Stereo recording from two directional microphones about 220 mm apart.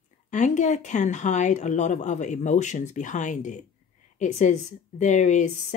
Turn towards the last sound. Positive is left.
turn(degrees=35)  # may be behind; listen again after turning